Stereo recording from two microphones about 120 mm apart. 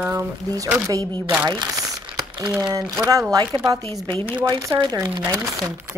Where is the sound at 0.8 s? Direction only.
30° right (ahead or behind).